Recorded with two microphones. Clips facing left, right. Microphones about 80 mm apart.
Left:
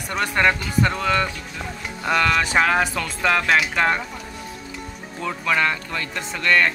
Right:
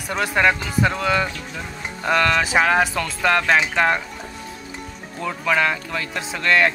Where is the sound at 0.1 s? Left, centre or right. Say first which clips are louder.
Right 1 dB; centre.